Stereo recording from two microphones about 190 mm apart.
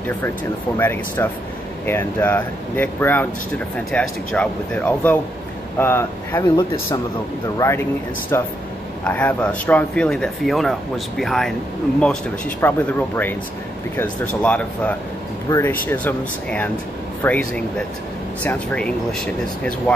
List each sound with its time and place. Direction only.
0.7 s speech: 10° left (ahead or behind)
15.5 s speech: 25° left (ahead or behind)
15.9 s speech: 10° left (ahead or behind)